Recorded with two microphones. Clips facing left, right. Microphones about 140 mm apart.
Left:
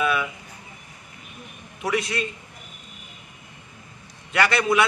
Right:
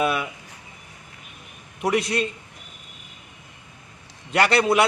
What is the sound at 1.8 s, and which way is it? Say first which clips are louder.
Speech: right 3 dB; 35° right (ahead or behind).